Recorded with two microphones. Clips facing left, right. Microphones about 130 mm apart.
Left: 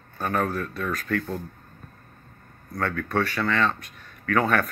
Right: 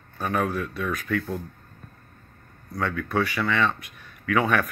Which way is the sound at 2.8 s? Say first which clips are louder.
Even; centre (ahead or behind).